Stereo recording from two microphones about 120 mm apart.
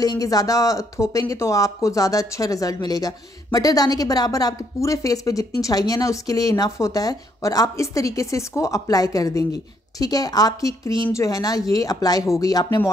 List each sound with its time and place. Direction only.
0.0 s a woman's voice: 30° left (ahead or behind)